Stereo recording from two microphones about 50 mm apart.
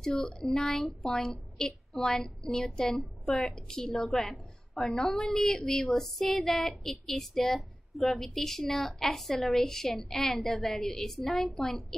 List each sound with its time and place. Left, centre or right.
0.0 s child singing: centre